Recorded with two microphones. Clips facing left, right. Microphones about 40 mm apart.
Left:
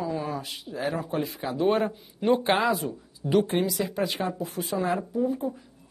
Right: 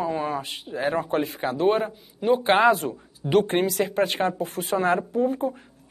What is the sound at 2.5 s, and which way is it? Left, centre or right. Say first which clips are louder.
Speech: right 5 dB; right.